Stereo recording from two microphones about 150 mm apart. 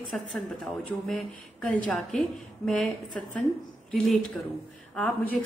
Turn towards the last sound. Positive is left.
turn(degrees=5)  # may be behind; listen again after turning